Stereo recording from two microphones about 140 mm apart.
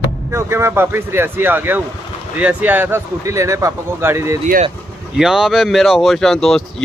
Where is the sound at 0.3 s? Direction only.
20° right (ahead or behind).